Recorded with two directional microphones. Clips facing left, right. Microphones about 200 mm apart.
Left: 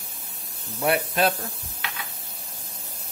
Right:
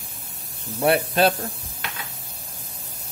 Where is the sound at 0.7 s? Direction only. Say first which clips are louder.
Right 4 dB; 30° right (ahead or behind).